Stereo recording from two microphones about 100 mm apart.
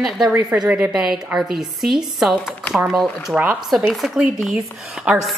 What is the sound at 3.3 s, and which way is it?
A woman's voice, 10° right (ahead or behind).